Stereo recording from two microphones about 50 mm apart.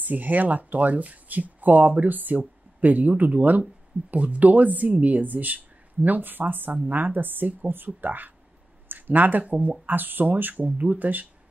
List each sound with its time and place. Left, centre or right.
0.0 s speech: right